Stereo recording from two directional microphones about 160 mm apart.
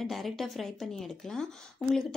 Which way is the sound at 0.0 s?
Centre (ahead or behind).